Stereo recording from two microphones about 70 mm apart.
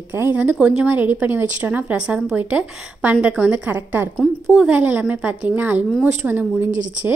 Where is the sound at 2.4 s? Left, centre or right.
Right.